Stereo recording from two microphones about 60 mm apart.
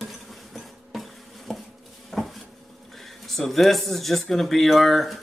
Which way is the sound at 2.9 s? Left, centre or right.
Centre.